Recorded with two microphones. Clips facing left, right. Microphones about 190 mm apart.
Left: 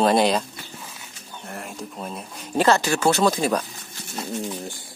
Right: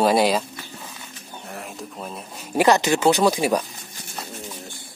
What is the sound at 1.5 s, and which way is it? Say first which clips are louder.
Bird: left 1 dB; centre (ahead or behind).